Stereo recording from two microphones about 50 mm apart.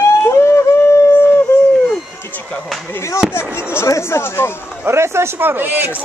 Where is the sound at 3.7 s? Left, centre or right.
Left.